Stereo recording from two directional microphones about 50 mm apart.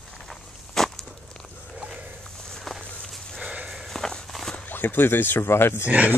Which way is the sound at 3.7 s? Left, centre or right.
Centre.